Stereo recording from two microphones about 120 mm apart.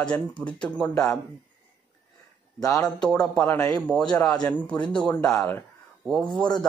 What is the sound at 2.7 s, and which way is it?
A man's voice, 5° left (ahead or behind).